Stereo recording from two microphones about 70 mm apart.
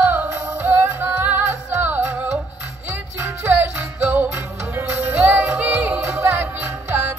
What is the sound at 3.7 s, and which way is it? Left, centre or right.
Music, right.